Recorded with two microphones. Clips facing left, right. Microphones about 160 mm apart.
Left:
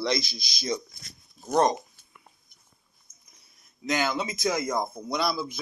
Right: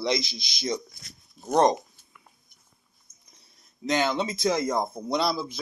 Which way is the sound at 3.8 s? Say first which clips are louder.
Right 2 dB; 30° right (ahead or behind).